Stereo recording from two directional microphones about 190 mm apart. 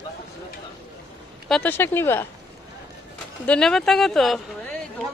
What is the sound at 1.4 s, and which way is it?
Speech, 5° left (ahead or behind).